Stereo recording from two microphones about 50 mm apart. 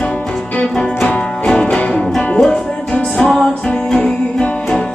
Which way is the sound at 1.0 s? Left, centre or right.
Centre.